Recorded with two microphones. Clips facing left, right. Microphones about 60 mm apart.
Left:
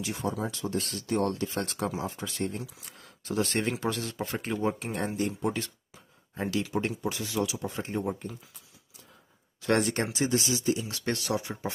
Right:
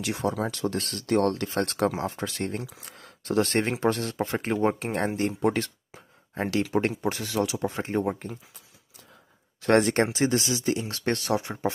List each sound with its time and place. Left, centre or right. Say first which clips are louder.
0.0 s speech: right 4 dB; right
5.9 s a sound: right 5 dB; right
6.5 s speech: right 5 dB; right
9.6 s speech: right 6 dB; right